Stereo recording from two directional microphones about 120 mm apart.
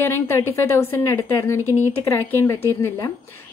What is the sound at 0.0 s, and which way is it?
A woman's voice, 20° left (ahead or behind).